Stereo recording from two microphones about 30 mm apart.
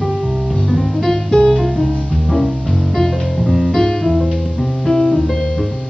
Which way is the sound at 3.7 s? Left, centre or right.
Centre.